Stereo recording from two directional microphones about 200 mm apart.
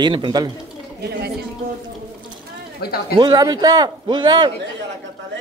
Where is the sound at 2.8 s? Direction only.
55° left (ahead or behind).